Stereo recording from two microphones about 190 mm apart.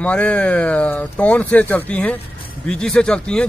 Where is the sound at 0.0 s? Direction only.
5° left (ahead or behind).